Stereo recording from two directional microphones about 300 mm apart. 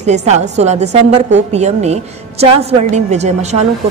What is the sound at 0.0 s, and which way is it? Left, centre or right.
A woman's voice, right.